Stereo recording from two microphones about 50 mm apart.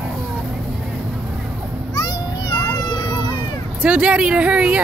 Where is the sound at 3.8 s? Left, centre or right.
Right.